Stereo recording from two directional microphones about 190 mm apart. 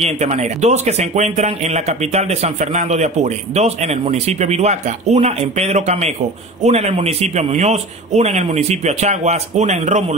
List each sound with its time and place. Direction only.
0.0 s speech: 35° right (ahead or behind)